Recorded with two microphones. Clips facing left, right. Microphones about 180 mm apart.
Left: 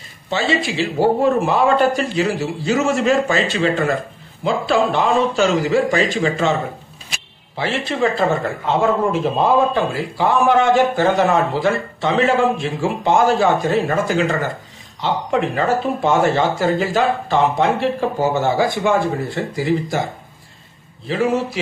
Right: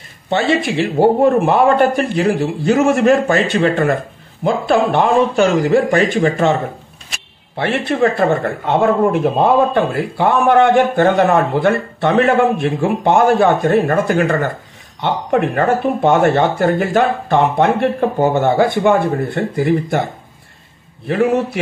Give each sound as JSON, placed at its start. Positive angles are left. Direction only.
{"t": 0.3, "sound": "speech", "side_deg": -55}
{"t": 7.5, "sound": "speech", "side_deg": -60}
{"t": 21.1, "sound": "speech", "side_deg": -60}